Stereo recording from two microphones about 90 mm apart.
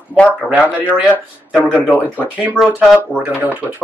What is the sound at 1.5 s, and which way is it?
Speech, 15° left (ahead or behind).